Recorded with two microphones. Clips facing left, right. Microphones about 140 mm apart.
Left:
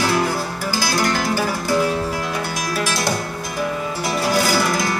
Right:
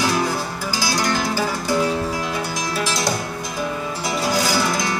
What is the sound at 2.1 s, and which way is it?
Music, 15° right (ahead or behind).